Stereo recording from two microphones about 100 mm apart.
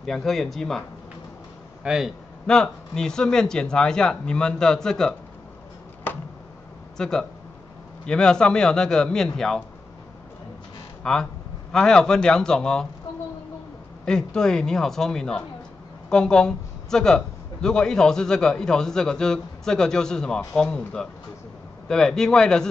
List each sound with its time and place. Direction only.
0.0 s speech: 5° left (ahead or behind)
1.8 s speech: 5° right (ahead or behind)
2.4 s a man's voice: 5° left (ahead or behind)
6.1 s a sound: 20° left (ahead or behind)
7.0 s a man's voice: 5° left (ahead or behind)
11.0 s a man's voice: 5° left (ahead or behind)
14.0 s a man's voice: 5° left (ahead or behind)